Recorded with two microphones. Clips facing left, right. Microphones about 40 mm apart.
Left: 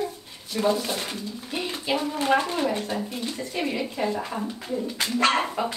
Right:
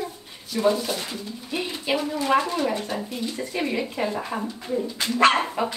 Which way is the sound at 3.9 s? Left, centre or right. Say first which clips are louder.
Right 1 dB; centre.